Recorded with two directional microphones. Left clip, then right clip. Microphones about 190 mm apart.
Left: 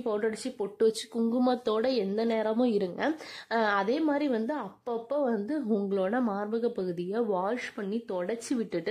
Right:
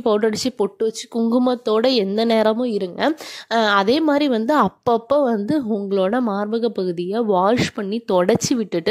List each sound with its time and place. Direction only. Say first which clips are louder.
0.0 s speech: right 12 dB; 35° right (ahead or behind)
0.7 s speech: right 5 dB; 20° right (ahead or behind); by 2.5 s 35° right (ahead or behind)
2.5 s a woman's voice: right 6 dB; 15° right (ahead or behind)
3.0 s speech: right 10 dB; 30° right (ahead or behind)
8.2 s a woman's voice: right 18 dB; 45° right (ahead or behind)